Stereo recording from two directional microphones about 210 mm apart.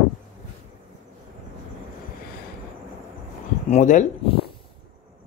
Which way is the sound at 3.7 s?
35° left (ahead or behind).